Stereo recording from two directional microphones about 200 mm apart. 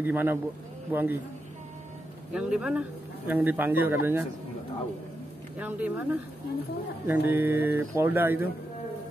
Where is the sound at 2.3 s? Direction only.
5° right (ahead or behind).